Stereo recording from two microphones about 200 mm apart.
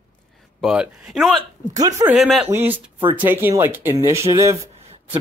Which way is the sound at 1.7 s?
20° right (ahead or behind).